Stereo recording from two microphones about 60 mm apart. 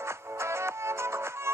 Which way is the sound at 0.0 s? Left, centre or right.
Right.